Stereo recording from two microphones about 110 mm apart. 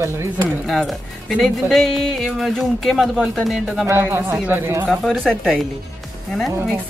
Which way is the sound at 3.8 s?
20° right (ahead or behind).